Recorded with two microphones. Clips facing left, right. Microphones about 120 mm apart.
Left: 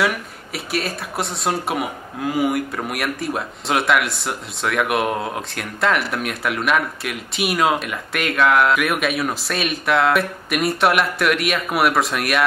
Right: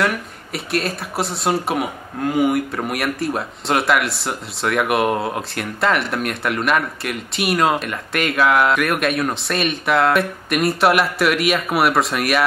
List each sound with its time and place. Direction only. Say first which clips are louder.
0.0 s speech: even; centre (ahead or behind)